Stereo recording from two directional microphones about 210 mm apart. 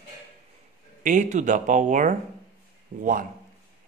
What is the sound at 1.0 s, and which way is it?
Speech, 35° right (ahead or behind).